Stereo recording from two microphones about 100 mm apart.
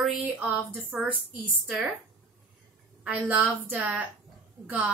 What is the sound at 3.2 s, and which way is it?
A woman's voice, 15° right (ahead or behind).